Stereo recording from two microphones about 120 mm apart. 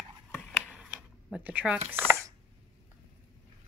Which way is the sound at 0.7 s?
10° right (ahead or behind).